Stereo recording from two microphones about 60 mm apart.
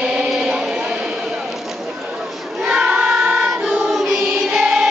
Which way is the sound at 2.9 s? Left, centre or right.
Centre.